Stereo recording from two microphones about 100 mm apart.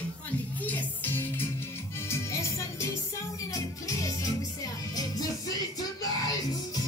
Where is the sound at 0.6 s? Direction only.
15° left (ahead or behind); by 5.2 s 35° left (ahead or behind).